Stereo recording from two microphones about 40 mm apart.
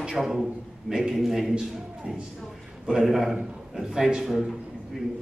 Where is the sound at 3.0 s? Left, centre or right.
Centre.